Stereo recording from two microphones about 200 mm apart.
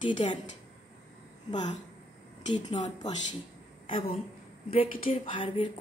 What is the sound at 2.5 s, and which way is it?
Speech, 25° left (ahead or behind).